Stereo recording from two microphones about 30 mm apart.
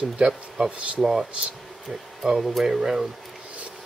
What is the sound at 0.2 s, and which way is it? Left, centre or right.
Speech, right.